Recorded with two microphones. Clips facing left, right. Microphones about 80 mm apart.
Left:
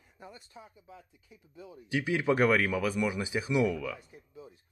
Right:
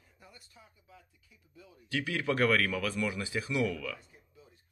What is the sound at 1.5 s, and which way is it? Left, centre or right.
Speech, left.